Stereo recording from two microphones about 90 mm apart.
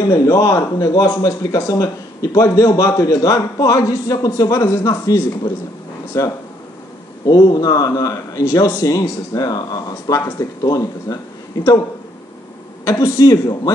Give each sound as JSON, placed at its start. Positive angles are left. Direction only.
{"t": 0.1, "sound": "a man's voice", "side_deg": 40}
{"t": 7.2, "sound": "speech", "side_deg": 45}
{"t": 12.8, "sound": "a man's voice", "side_deg": 35}